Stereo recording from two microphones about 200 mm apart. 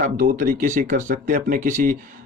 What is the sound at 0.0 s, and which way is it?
Speech, 45° right (ahead or behind).